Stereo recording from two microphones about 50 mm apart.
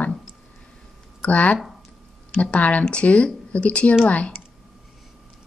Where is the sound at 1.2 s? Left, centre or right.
Left.